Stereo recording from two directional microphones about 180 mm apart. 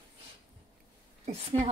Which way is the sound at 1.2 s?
35° right (ahead or behind).